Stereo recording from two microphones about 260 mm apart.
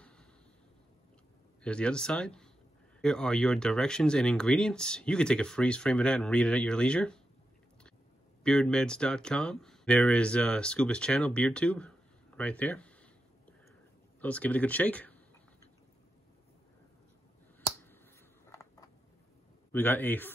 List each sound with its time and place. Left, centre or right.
1.6 s speech: centre
8.5 s speech: centre
12.4 s a sound: centre
14.2 s speech: centre
18.5 s a sound: centre
19.7 s a man's voice: centre